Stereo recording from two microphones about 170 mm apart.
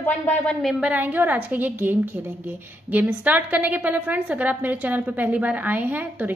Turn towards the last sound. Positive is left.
turn(degrees=-10)  # may be behind; listen again after turning